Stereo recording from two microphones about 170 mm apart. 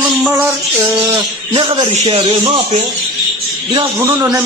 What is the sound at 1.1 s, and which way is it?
Speech, 20° right (ahead or behind).